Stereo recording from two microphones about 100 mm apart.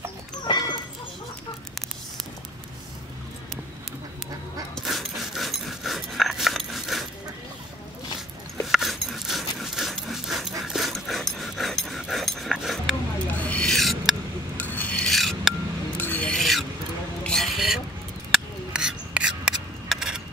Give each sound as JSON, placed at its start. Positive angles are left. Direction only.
{"t": 0.5, "sound": "a sound", "side_deg": 50}
{"t": 4.8, "sound": "dog", "side_deg": 0}
{"t": 8.6, "sound": "zipper", "side_deg": 0}
{"t": 10.6, "sound": "dog", "side_deg": 0}
{"t": 13.4, "sound": "owl", "side_deg": 15}
{"t": 14.6, "sound": "rub", "side_deg": 15}
{"t": 15.0, "sound": "filing", "side_deg": 0}
{"t": 16.0, "sound": "filing", "side_deg": 15}
{"t": 16.3, "sound": "filing", "side_deg": 0}
{"t": 17.2, "sound": "a sound", "side_deg": 5}